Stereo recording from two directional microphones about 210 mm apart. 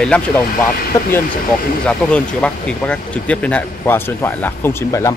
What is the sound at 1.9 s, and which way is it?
Speech, 5° left (ahead or behind).